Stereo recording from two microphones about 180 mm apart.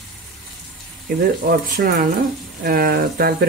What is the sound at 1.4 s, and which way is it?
Speech, 50° right (ahead or behind).